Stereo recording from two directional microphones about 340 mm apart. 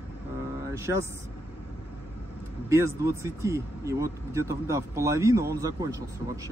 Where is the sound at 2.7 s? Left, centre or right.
Centre.